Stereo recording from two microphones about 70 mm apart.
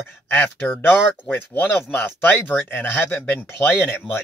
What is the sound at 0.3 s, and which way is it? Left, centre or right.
Speech, left.